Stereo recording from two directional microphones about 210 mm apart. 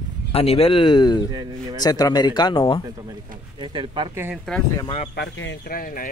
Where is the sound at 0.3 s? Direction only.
30° left (ahead or behind).